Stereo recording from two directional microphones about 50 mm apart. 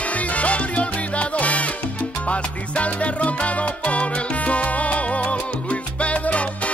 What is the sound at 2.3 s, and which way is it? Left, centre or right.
Music, left.